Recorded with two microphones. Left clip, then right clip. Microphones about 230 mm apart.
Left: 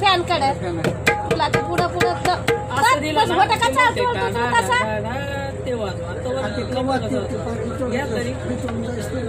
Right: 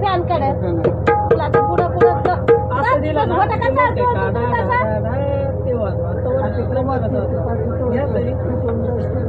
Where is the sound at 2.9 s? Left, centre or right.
Left.